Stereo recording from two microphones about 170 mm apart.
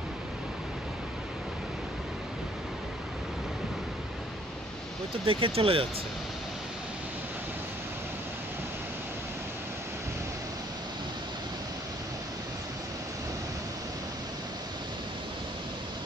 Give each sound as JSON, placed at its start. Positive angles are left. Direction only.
{"t": 5.2, "sound": "speech", "side_deg": -30}